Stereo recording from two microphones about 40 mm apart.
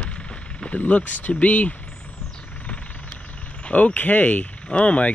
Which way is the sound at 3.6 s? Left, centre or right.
Left.